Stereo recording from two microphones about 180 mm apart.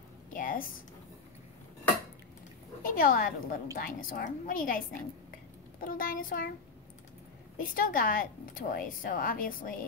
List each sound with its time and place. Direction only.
0.3 s a sound: 50° left (ahead or behind)
2.8 s a woman's voice: 50° left (ahead or behind)
7.5 s a woman's voice: 50° left (ahead or behind)